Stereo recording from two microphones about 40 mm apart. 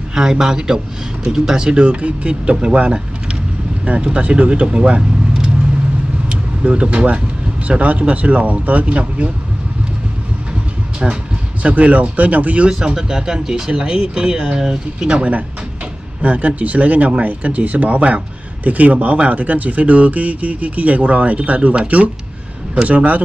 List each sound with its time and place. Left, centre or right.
0.1 s speech: centre
3.8 s speech: right
6.6 s speech: right
11.6 s speech: right
12.6 s speech: centre
13.7 s speech: right
16.2 s speech: right
22.8 s speech: right